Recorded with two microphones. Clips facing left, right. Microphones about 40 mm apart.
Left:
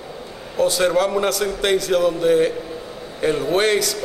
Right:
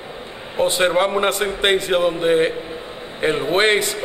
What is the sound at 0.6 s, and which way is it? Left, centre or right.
A man's voice, right.